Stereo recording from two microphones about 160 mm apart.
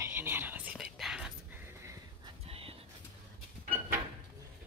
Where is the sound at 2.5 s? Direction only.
35° right (ahead or behind).